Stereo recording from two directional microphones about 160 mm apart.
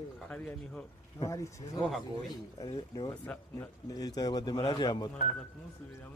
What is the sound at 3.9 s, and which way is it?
Speech, 25° left (ahead or behind).